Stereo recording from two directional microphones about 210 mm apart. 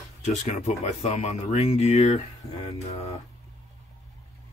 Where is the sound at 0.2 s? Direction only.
35° left (ahead or behind).